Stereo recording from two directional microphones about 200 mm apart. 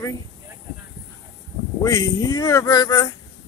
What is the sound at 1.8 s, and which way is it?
Speech, 15° left (ahead or behind).